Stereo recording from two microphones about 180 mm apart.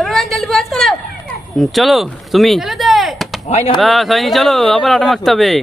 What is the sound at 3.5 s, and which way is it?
Speech, 35° left (ahead or behind).